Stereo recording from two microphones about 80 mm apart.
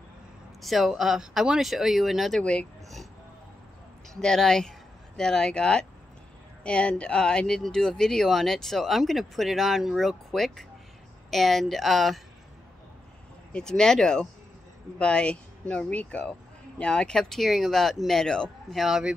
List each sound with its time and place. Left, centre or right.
0.6 s speech: centre
4.1 s speech: centre
13.5 s speech: centre